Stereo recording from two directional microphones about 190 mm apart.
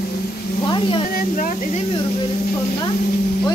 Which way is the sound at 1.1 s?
45° left (ahead or behind).